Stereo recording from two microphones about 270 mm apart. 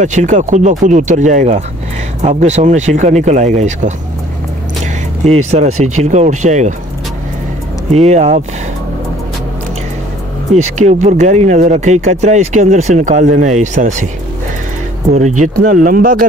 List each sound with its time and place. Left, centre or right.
0.0 s speech: right
5.7 s speech: right
6.0 s speech: right
7.9 s speech: right
10.5 s speech: right
15.1 s speech: right